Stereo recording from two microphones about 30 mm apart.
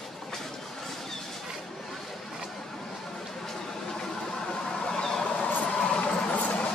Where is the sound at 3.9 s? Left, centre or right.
Left.